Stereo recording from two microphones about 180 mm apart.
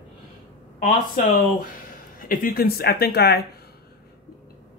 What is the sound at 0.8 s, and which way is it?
A woman's voice, 50° left (ahead or behind).